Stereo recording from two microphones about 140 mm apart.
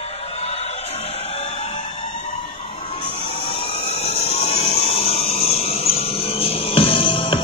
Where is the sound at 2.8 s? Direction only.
40° left (ahead or behind).